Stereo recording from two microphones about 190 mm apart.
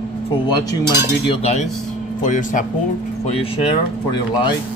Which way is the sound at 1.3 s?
35° left (ahead or behind).